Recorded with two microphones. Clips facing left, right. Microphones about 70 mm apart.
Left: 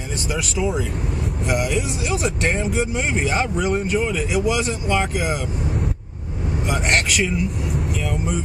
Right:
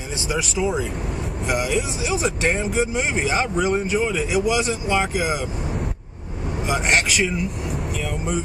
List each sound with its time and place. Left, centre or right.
0.3 s speech: centre
6.7 s speech: centre
8.0 s vehicle: centre